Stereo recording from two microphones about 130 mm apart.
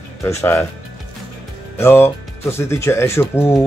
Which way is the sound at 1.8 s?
20° left (ahead or behind).